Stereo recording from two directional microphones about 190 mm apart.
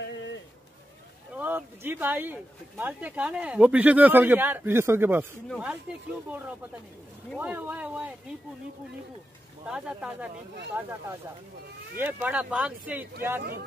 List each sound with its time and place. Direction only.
0.0 s a sound: 70° left (ahead or behind)
1.3 s speech: 10° right (ahead or behind)
7.3 s speech: 10° right (ahead or behind)
9.7 s speech: 5° right (ahead or behind)